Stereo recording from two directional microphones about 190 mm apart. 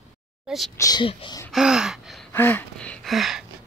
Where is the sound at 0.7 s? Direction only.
20° left (ahead or behind).